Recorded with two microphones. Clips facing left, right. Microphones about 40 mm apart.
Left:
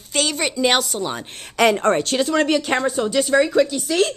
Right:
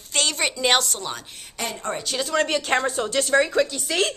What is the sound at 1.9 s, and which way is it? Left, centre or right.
Speech, left.